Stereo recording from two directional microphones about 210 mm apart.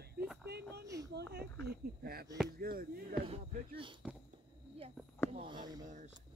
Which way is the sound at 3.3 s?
25° right (ahead or behind).